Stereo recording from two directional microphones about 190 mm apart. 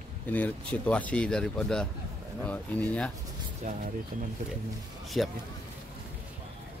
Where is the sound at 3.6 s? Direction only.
40° right (ahead or behind).